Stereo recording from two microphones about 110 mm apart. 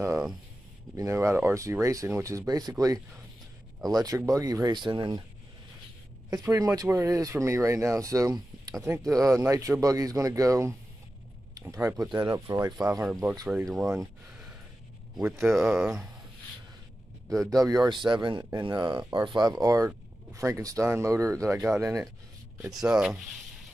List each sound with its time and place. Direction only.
0.9 s speech: 25° right (ahead or behind)
3.9 s speech: 30° right (ahead or behind)
6.3 s speech: 35° right (ahead or behind)
13.7 s speech: centre (ahead or behind)
15.3 s speech: 5° right (ahead or behind)
17.3 s speech: 30° right (ahead or behind)
22.7 s speech: 5° right (ahead or behind)